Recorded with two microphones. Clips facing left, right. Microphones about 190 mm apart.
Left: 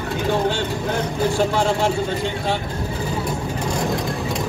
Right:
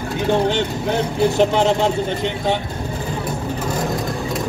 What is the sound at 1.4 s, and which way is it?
Speech, 20° right (ahead or behind).